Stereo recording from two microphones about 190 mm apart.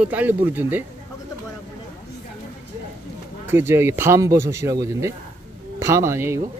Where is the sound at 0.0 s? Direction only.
10° right (ahead or behind).